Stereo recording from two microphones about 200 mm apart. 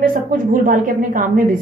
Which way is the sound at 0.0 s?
45° right (ahead or behind).